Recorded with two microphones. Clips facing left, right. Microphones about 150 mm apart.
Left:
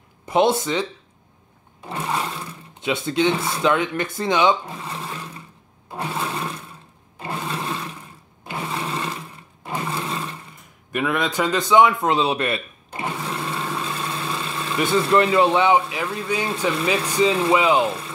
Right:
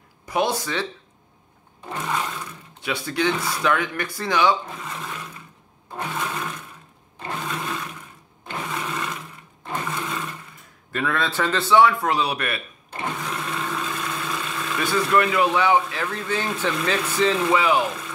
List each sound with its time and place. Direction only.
0.2 s speech: 25° left (ahead or behind)
2.0 s speech: 30° left (ahead or behind)
5.9 s a sound: 30° left (ahead or behind)
8.6 s sewing machine: 30° left (ahead or behind)
9.8 s roar: 30° left (ahead or behind)
10.9 s a man's voice: 15° left (ahead or behind)
13.2 s vehicle: 30° left (ahead or behind); by 16.4 s 10° left (ahead or behind)
17.1 s speech: 15° left (ahead or behind)
17.4 s a man's voice: 25° left (ahead or behind)